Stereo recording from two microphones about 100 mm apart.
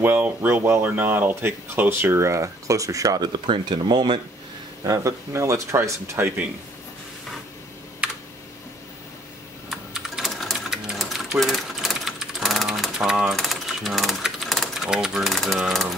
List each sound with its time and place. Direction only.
0.0 s speech: 20° right (ahead or behind); by 3.3 s 35° right (ahead or behind)
3.4 s speech: 55° right (ahead or behind)
4.8 s speech: 35° right (ahead or behind)
8.0 s computer keyboard: 10° right (ahead or behind)
9.7 s typing: 5° right (ahead or behind)